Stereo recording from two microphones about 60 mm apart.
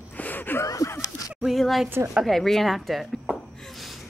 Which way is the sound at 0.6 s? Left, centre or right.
Left.